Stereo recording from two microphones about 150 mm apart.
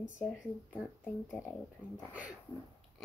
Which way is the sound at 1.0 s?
15° left (ahead or behind).